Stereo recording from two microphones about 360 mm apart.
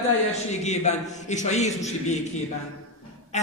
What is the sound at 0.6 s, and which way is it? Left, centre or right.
Speech, centre.